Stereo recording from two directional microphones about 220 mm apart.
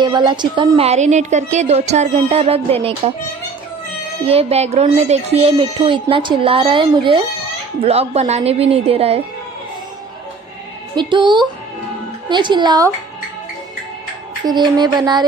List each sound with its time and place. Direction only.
0.0 s speech: 20° right (ahead or behind)
4.2 s speech: 25° right (ahead or behind)
11.0 s speech: 20° right (ahead or behind)
14.4 s speech: 20° right (ahead or behind)